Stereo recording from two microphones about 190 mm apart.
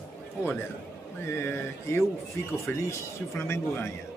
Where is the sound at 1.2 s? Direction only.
15° left (ahead or behind).